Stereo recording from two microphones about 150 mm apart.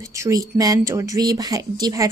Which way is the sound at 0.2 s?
25° right (ahead or behind).